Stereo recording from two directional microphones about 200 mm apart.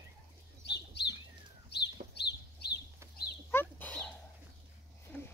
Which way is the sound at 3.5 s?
10° left (ahead or behind).